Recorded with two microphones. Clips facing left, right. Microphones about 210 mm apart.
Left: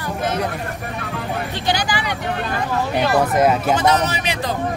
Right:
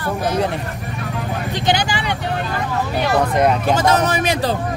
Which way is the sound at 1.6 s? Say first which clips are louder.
Right 3 dB; 25° right (ahead or behind).